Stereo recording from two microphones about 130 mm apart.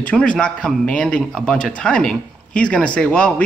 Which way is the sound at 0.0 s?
10° left (ahead or behind).